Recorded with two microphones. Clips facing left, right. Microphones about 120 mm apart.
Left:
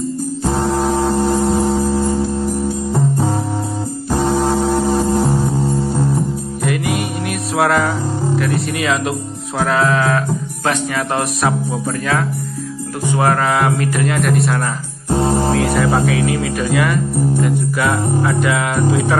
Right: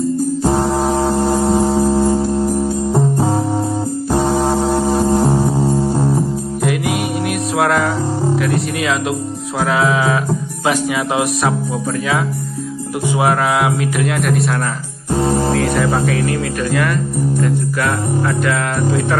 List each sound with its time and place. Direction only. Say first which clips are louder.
0.4 s music: left 1 dB; 5° right (ahead or behind)
1.8 s music: right 3 dB; 25° right (ahead or behind)
4.1 s music: even; 5° right (ahead or behind)
6.6 s music: right 1 dB; centre (ahead or behind)
8.4 s speech: right 1 dB; centre (ahead or behind)
13.1 s speech: even; 5° right (ahead or behind)
15.5 s speech: left 1 dB; centre (ahead or behind)